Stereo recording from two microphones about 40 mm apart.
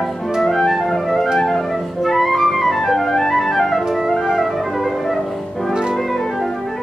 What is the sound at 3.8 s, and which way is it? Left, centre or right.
Music, centre.